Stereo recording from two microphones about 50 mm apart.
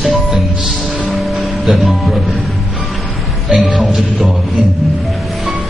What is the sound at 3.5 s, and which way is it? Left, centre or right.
Music, centre.